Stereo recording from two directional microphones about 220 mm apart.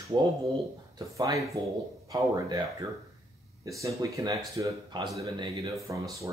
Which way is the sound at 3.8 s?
15° right (ahead or behind).